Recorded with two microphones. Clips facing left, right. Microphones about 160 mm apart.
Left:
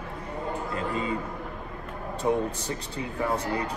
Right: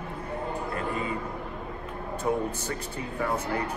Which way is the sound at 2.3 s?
20° left (ahead or behind).